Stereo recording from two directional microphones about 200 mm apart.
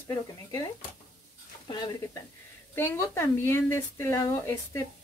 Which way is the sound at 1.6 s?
20° left (ahead or behind).